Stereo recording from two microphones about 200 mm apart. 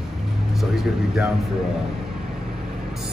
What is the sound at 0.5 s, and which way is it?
Speech, centre (ahead or behind).